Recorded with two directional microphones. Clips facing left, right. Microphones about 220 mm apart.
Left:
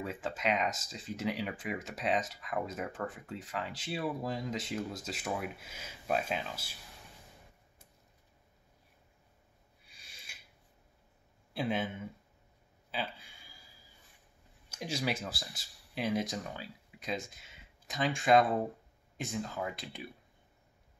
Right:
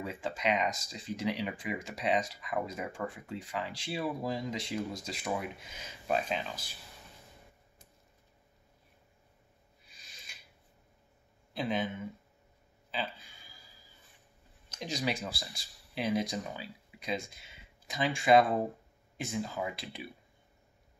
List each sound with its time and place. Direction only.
0.0 s speech: centre (ahead or behind)
9.8 s filing: 10° left (ahead or behind)
11.5 s speech: 5° left (ahead or behind)
14.7 s speech: 10° left (ahead or behind)